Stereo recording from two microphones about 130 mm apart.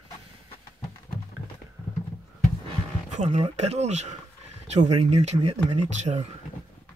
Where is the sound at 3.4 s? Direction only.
55° right (ahead or behind).